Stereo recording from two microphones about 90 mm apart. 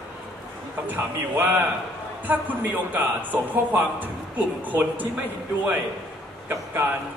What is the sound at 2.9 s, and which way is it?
Speech, 20° right (ahead or behind).